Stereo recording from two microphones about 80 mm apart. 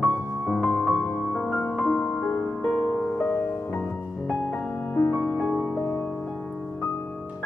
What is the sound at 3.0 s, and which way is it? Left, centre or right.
Music, left.